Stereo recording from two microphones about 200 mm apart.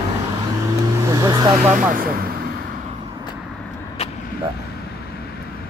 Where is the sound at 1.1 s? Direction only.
20° right (ahead or behind).